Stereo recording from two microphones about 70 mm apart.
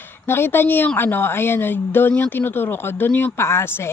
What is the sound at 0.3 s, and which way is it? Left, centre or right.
Speech, left.